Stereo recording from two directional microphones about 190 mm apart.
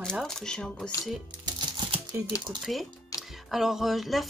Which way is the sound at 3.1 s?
15° left (ahead or behind).